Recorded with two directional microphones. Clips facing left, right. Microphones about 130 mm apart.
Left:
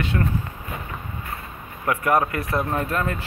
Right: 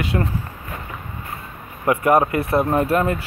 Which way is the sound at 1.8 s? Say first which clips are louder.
Right 4 dB; 25° right (ahead or behind).